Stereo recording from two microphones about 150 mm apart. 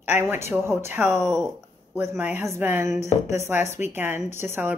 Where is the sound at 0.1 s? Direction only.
15° right (ahead or behind).